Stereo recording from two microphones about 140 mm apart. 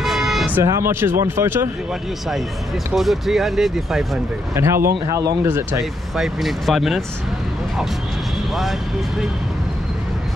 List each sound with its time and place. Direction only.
0.0 s music: centre (ahead or behind)
0.5 s speech: 20° right (ahead or behind)
2.9 s speech: centre (ahead or behind)
4.6 s speech: 20° right (ahead or behind)
6.1 s speech: centre (ahead or behind)